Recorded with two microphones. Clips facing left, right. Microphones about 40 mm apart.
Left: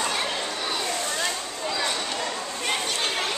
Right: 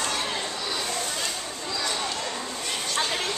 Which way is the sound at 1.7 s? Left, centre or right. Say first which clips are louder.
Left 2 dB; left.